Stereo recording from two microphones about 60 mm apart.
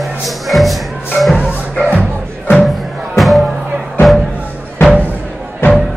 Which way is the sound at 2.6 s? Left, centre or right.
Centre.